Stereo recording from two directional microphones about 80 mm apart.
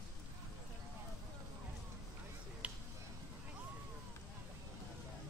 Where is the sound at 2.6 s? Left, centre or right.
Centre.